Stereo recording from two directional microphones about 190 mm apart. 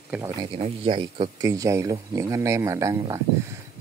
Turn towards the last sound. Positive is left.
turn(degrees=-15)  # may be behind; listen again after turning